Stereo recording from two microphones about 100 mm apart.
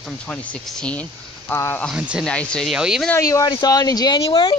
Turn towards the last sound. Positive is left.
turn(degrees=65)  # may be behind; listen again after turning